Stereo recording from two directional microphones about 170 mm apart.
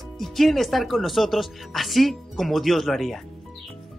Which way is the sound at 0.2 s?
Centre (ahead or behind).